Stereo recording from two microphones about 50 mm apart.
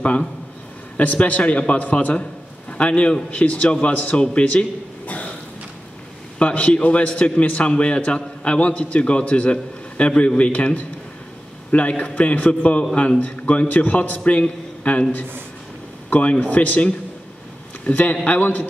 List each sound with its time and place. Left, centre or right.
0.0 s a man's voice: left
6.3 s a man's voice: left
12.0 s a man's voice: left
16.1 s a man's voice: left